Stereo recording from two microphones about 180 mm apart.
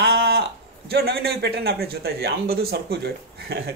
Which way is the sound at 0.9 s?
60° right (ahead or behind).